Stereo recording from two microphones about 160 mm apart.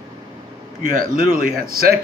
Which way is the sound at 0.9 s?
60° right (ahead or behind).